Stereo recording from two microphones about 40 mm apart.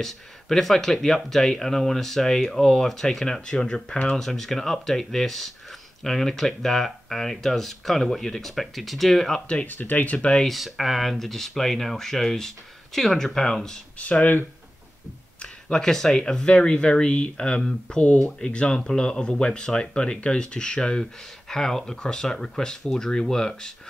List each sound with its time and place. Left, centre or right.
0.0 s speech: centre
3.3 s speech: left
9.7 s speech: left
10.3 s speech: centre
15.7 s speech: centre